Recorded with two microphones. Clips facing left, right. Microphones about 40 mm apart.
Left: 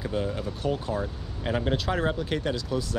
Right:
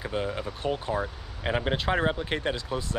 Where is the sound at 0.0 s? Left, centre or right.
Centre.